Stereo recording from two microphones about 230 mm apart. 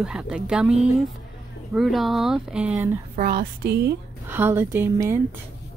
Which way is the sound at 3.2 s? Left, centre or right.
Right.